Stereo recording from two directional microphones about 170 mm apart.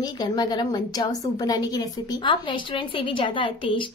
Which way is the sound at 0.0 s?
25° left (ahead or behind).